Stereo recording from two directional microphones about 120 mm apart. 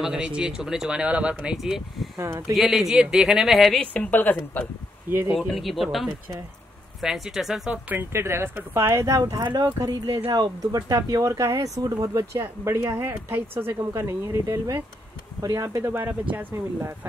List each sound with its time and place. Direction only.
0.0 s speech: 5° right (ahead or behind)
3.8 s speech: 10° left (ahead or behind)
5.3 s speech: 5° right (ahead or behind)
7.9 s speech: 20° right (ahead or behind)